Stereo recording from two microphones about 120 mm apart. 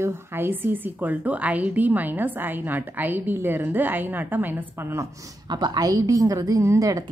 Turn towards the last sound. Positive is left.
turn(degrees=-30)  # may be behind; listen again after turning